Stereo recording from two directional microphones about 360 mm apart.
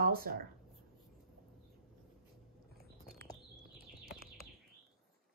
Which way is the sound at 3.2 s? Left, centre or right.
Right.